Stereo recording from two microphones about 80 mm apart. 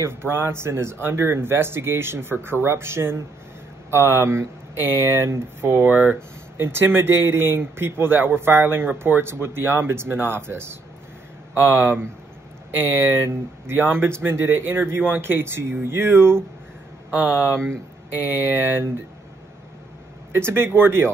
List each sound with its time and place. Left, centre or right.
0.0 s speech: right
11.6 s speech: centre
17.6 s speech: right
20.3 s speech: right